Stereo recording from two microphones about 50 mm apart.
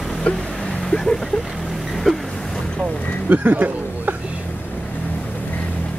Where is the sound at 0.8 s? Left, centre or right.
Centre.